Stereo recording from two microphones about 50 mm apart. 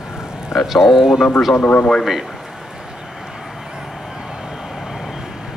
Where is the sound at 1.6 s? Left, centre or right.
Left.